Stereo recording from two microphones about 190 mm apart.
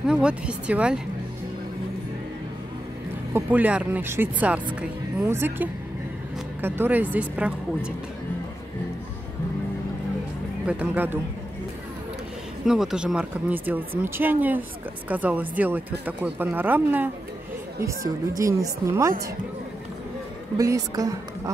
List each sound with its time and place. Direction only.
0.0 s speech: 5° right (ahead or behind)
3.3 s speech: 10° right (ahead or behind)
10.7 s speech: 10° right (ahead or behind)
12.6 s speech: centre (ahead or behind)
20.5 s speech: 20° right (ahead or behind)